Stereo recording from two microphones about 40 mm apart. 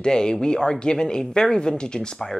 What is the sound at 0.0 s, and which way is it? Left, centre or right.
Speech, centre.